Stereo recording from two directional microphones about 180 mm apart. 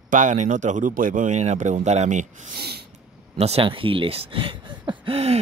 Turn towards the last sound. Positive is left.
turn(degrees=-35)  # may be behind; listen again after turning